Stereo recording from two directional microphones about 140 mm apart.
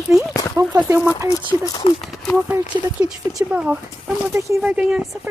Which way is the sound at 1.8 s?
45° left (ahead or behind).